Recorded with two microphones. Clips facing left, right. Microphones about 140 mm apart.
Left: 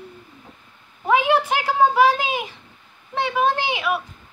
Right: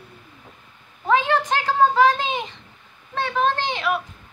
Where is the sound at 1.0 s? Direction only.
10° left (ahead or behind).